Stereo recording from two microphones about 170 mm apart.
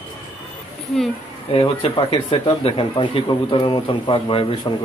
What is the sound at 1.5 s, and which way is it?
Speech, 30° left (ahead or behind).